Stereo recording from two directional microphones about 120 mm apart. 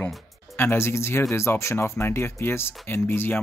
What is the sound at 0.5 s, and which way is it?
Speech, 20° left (ahead or behind).